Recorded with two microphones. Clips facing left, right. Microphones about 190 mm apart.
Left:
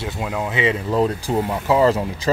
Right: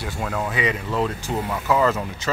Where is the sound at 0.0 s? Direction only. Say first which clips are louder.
Left 2 dB; 15° left (ahead or behind).